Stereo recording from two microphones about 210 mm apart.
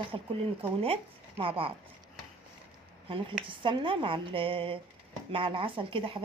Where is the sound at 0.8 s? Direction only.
25° right (ahead or behind).